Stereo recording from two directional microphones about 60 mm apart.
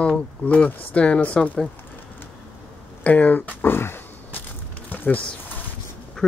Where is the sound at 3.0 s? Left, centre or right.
Left.